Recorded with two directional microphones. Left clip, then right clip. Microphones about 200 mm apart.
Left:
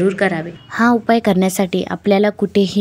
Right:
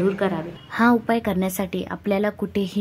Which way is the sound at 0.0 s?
10° left (ahead or behind).